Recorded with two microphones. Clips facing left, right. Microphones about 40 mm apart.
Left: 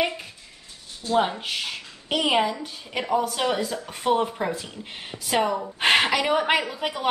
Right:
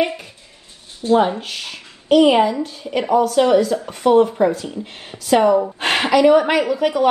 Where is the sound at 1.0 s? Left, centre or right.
Right.